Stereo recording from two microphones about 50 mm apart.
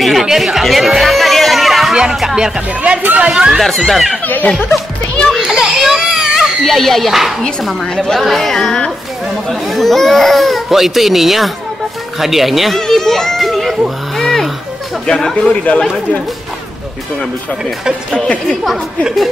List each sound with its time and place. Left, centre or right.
0.0 s music: centre
2.1 s speech: centre
2.8 s speech: right
3.6 s speech: centre
4.2 s speech: left
5.3 s crying: centre
6.6 s speech: centre
7.8 s speech: centre
8.2 s speech: centre
12.7 s children playing: centre
15.0 s speech: centre
18.2 s a woman's voice: left